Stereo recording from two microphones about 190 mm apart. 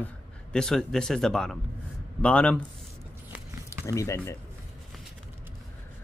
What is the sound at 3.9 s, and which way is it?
Speech, 15° left (ahead or behind).